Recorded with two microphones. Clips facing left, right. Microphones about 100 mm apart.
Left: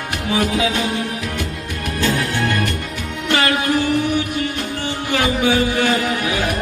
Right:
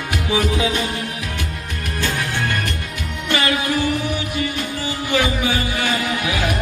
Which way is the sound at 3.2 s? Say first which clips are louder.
Left 2 dB; 65° left (ahead or behind).